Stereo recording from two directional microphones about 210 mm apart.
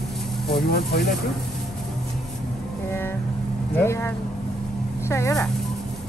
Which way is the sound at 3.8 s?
10° left (ahead or behind).